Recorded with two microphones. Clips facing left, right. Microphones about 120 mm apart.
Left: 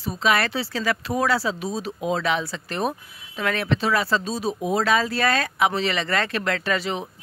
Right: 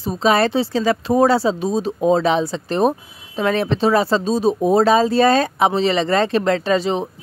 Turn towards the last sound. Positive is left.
turn(degrees=-30)  # may be behind; listen again after turning